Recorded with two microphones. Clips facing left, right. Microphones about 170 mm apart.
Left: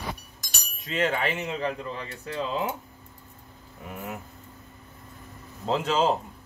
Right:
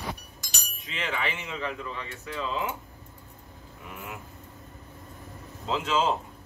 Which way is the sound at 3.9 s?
35° left (ahead or behind).